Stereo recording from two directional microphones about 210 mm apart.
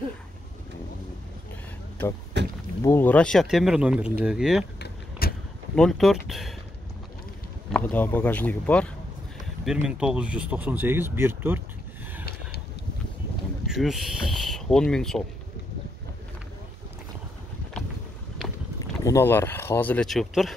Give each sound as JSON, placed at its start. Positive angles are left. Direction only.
{"t": 2.3, "sound": "speech", "side_deg": -55}
{"t": 2.8, "sound": "speech", "side_deg": 10}
{"t": 4.7, "sound": "vehicle", "side_deg": 50}
{"t": 5.8, "sound": "speech", "side_deg": 0}
{"t": 7.7, "sound": "speech", "side_deg": 10}
{"t": 13.7, "sound": "speech", "side_deg": 0}
{"t": 18.8, "sound": "speech", "side_deg": 15}